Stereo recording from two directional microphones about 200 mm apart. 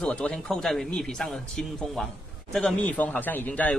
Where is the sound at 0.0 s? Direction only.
5° left (ahead or behind).